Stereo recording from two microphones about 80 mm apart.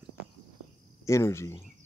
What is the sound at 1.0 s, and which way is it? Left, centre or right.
Speech, left.